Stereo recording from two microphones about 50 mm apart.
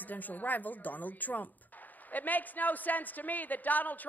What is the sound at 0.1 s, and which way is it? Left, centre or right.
A man's voice, left.